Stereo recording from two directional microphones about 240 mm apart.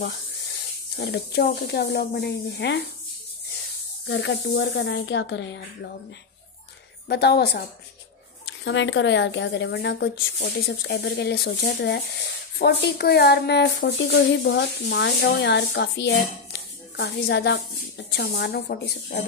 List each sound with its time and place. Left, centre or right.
0.9 s speech: left
4.1 s speech: left
7.1 s speech: left